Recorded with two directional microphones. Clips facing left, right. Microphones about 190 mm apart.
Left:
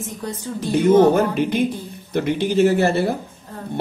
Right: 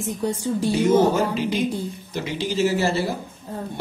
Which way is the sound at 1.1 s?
55° left (ahead or behind).